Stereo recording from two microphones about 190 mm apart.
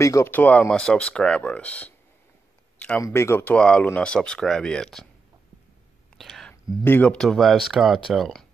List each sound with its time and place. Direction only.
0.0 s speech: 15° left (ahead or behind)
6.1 s whispering: centre (ahead or behind)
6.8 s speech: 10° left (ahead or behind)